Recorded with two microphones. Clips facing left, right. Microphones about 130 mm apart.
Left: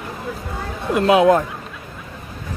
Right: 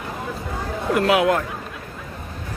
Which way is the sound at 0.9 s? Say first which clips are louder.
Left 4 dB; 25° left (ahead or behind).